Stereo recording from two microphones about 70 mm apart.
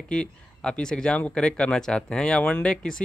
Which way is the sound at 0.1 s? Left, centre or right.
Centre.